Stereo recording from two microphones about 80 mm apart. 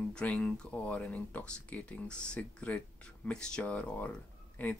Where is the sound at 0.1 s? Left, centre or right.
Centre.